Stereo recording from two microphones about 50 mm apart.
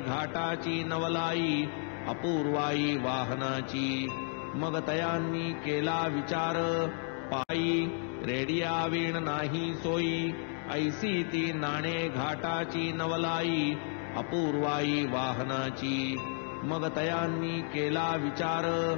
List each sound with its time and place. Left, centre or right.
0.2 s music: centre